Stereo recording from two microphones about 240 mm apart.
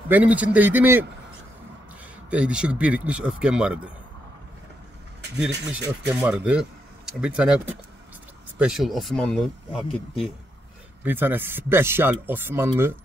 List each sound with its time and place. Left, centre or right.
0.1 s speech: centre
2.2 s speech: centre
5.4 s speech: centre
8.5 s speech: centre